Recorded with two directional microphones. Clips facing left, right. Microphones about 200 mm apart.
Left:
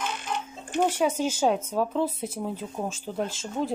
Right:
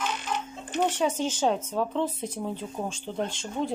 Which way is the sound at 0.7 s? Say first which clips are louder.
Left 2 dB; 10° left (ahead or behind).